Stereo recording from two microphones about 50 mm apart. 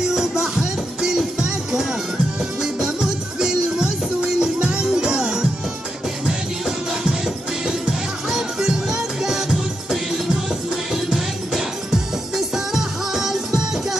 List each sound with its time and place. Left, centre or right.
0.0 s music: centre
8.3 s music: centre